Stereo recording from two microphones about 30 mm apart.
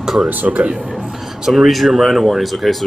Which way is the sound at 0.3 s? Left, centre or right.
Right.